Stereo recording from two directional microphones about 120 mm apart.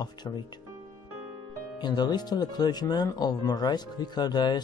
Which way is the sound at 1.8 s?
35° left (ahead or behind).